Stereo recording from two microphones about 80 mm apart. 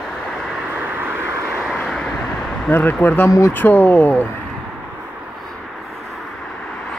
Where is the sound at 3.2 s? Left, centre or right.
Left.